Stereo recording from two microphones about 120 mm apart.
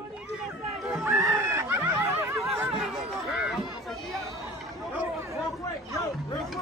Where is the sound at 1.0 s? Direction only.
25° right (ahead or behind).